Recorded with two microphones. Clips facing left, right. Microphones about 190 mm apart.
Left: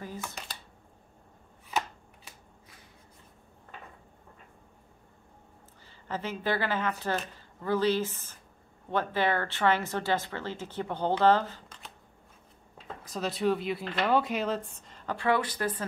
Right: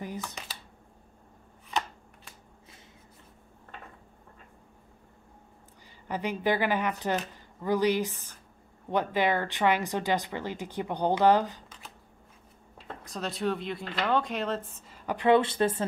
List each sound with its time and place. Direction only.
1.7 s shuffling cards: 5° left (ahead or behind)
6.0 s speech: 15° right (ahead or behind)
12.7 s speech: centre (ahead or behind)
15.1 s speech: 20° right (ahead or behind)